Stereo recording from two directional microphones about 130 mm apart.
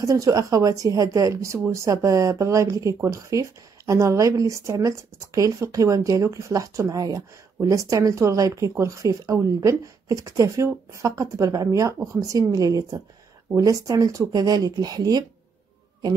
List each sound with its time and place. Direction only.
0.0 s speech: 25° right (ahead or behind)